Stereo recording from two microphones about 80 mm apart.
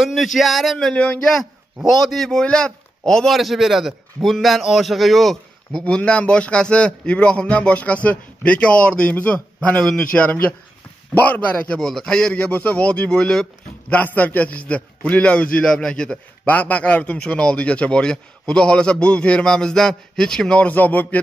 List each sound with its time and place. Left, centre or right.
0.0 s speech: centre
2.0 s a man's voice: centre
13.9 s a man's voice: centre